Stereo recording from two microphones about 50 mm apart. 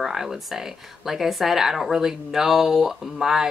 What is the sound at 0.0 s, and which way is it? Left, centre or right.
Speech, centre.